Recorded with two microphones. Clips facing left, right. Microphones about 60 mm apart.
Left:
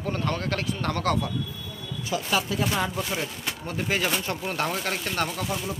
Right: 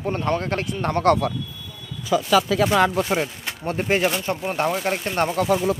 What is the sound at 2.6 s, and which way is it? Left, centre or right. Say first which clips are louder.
Speech: right 9 dB; right.